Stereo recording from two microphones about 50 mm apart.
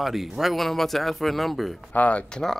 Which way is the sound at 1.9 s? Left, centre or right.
Left.